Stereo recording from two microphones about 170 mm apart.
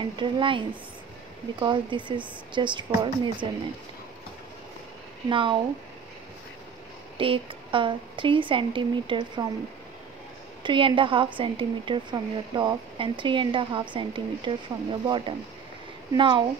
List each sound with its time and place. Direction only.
0.0 s speech: 30° right (ahead or behind)
5.3 s speech: 30° right (ahead or behind)
7.2 s speech: 30° right (ahead or behind)
10.6 s speech: 30° right (ahead or behind)